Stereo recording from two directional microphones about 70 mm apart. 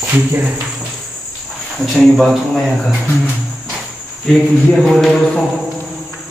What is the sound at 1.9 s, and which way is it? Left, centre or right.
Speech, centre.